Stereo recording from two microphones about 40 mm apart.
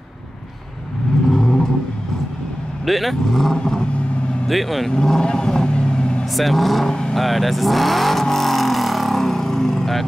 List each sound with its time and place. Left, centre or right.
1.3 s vehicle: centre
2.8 s speech: centre
3.5 s vehicle: centre
4.5 s speech: centre
4.9 s vehicle: centre
6.3 s speech: centre
6.9 s speech: centre
7.2 s vehicle: centre